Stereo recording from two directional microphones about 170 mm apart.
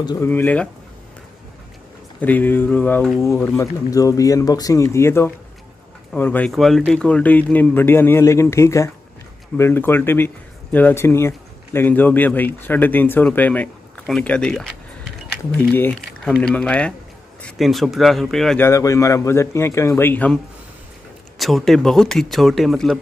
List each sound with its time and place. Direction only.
0.0 s speech: 25° left (ahead or behind)
0.3 s speech: 10° left (ahead or behind)
2.1 s speech: 10° left (ahead or behind)
18.6 s speech: 20° left (ahead or behind)
21.4 s speech: centre (ahead or behind)